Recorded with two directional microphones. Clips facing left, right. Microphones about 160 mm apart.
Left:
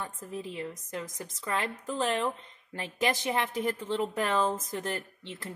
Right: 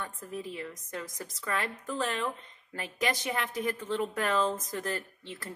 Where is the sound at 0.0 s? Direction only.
30° left (ahead or behind).